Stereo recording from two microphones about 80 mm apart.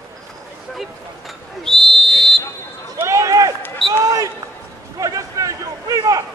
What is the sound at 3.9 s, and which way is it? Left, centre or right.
Basketball bounce, right.